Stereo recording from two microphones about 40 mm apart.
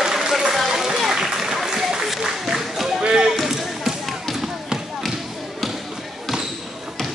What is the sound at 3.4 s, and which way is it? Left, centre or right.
Basketball bounce, centre.